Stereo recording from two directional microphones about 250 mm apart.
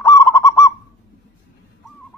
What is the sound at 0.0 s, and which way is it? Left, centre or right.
Goose, centre.